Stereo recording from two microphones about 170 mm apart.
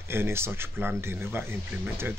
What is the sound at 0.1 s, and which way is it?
A man's voice, 15° right (ahead or behind).